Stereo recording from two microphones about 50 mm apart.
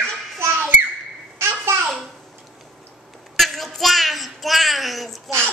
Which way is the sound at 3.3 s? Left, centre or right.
Centre.